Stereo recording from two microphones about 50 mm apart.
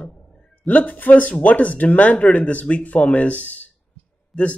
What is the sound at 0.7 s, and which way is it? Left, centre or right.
Speech, left.